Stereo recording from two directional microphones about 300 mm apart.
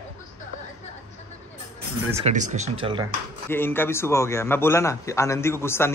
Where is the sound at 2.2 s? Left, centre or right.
Right.